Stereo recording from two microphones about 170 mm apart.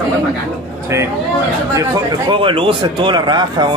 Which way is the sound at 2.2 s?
30° right (ahead or behind).